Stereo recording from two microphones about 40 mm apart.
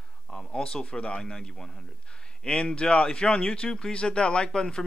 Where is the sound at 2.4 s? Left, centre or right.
Left.